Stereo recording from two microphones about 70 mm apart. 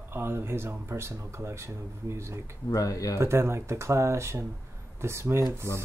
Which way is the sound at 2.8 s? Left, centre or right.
Left.